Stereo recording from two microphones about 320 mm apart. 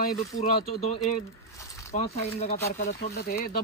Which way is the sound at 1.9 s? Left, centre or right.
Left.